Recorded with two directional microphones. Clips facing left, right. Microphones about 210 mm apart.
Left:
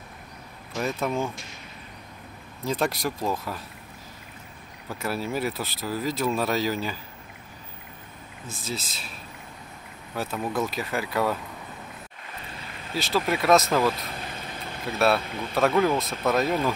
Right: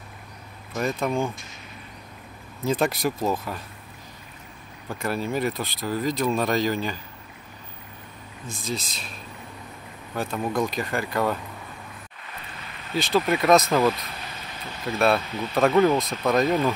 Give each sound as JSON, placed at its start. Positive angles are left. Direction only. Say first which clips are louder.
{"t": 0.7, "sound": "speech", "louder": "right 2 dB", "side_deg": 0}
{"t": 2.6, "sound": "speech", "louder": "right 3 dB", "side_deg": 0}
{"t": 4.8, "sound": "speech", "louder": "right 2 dB", "side_deg": 5}
{"t": 8.5, "sound": "speech", "louder": "right 3 dB", "side_deg": 5}
{"t": 10.1, "sound": "speech", "louder": "right 2 dB", "side_deg": 5}
{"t": 12.9, "sound": "speech", "louder": "right 3 dB", "side_deg": 0}
{"t": 14.2, "sound": "vehicle", "louder": "left 2 dB", "side_deg": 50}
{"t": 14.9, "sound": "speech", "louder": "right 1 dB", "side_deg": 0}
{"t": 15.2, "sound": "speech", "louder": "right 2 dB", "side_deg": 50}
{"t": 15.5, "sound": "speech", "louder": "right 3 dB", "side_deg": 0}